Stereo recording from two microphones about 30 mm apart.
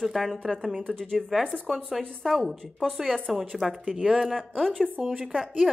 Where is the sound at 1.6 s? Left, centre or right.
Centre.